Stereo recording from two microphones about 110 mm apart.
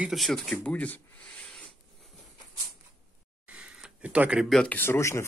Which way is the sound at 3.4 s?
10° right (ahead or behind).